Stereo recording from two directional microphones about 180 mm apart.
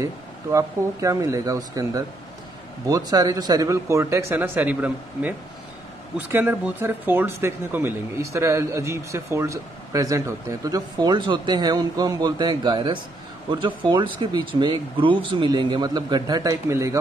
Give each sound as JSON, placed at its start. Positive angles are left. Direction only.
{"t": 0.0, "sound": "speech", "side_deg": -15}